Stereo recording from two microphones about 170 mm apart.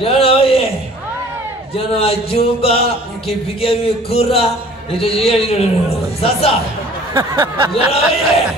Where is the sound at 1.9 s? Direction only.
35° left (ahead or behind).